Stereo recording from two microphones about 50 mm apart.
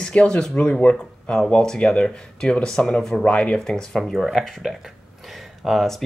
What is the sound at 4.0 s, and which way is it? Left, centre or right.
Speech, centre.